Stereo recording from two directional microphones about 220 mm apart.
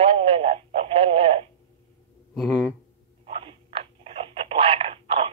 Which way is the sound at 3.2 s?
25° right (ahead or behind).